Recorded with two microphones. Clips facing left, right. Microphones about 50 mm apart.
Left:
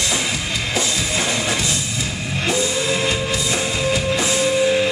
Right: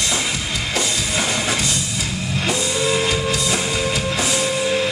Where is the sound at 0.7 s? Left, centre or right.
Centre.